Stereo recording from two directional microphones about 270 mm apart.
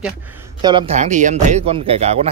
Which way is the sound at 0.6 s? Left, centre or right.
Centre.